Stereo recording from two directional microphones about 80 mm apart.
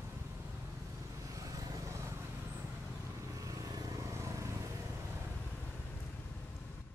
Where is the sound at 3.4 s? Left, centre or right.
Right.